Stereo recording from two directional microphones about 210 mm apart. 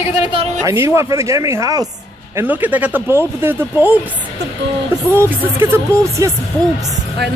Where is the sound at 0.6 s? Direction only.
15° right (ahead or behind).